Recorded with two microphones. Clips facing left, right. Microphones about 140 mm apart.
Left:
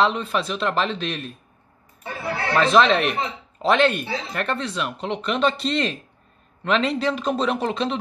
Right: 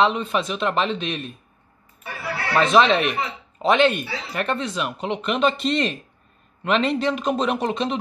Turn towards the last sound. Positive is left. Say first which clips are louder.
# even
turn(degrees=0)  # may be behind; listen again after turning